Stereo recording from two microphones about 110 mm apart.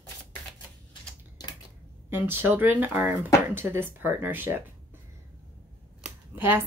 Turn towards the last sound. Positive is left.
turn(degrees=-20)  # may be behind; listen again after turning